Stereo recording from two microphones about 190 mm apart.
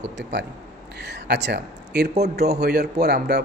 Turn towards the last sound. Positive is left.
turn(degrees=-60)  # may be behind; listen again after turning